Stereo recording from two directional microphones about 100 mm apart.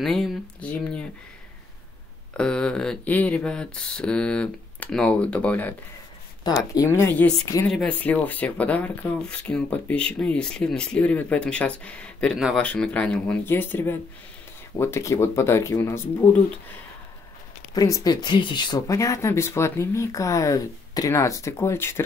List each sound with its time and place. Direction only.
0.0 s speech: 5° left (ahead or behind)
2.3 s speech: 10° left (ahead or behind)
6.7 s speech: 30° left (ahead or behind)
7.6 s speech: 10° left (ahead or behind); by 16.1 s 25° left (ahead or behind)
17.7 s speech: 35° left (ahead or behind)
18.9 s speech: 30° left (ahead or behind)